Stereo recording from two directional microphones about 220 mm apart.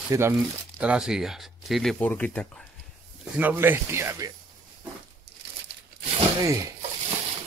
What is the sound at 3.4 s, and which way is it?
Speech, 10° right (ahead or behind).